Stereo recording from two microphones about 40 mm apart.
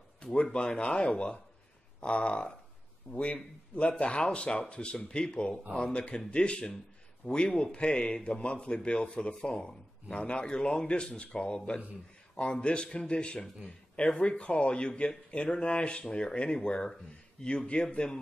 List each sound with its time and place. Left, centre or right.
0.2 s a man's voice: left